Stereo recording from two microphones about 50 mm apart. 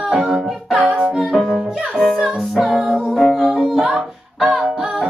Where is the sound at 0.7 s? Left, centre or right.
Right.